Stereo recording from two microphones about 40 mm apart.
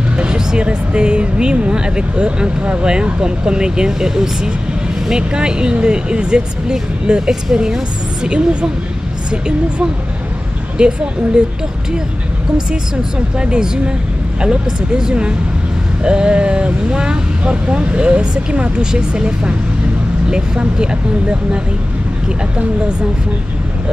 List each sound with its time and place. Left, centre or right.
0.2 s speech: right
10.8 s speech: right
13.4 s speech: right